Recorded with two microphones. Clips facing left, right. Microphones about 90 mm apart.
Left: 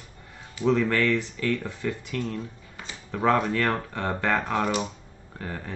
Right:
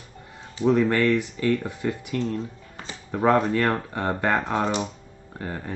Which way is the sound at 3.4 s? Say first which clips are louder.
Right 3 dB; 30° right (ahead or behind).